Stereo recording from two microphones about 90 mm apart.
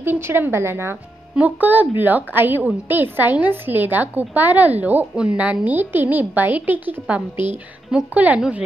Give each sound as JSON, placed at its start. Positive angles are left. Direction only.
{"t": 0.0, "sound": "a woman's voice", "side_deg": -20}
{"t": 1.3, "sound": "a woman's voice", "side_deg": -20}